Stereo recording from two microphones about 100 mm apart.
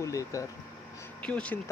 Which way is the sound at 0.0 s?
35° left (ahead or behind).